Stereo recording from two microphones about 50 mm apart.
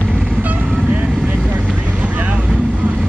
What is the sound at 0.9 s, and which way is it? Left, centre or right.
Vehicle, right.